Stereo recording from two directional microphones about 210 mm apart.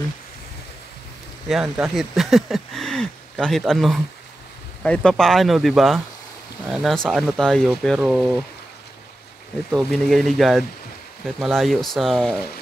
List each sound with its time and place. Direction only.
1.5 s speech: centre (ahead or behind)
9.7 s speech: centre (ahead or behind)